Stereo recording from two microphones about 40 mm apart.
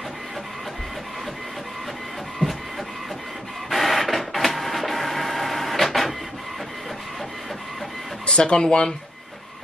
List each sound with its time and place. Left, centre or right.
2.4 s printer: left
3.7 s printer: centre
8.3 s speech: left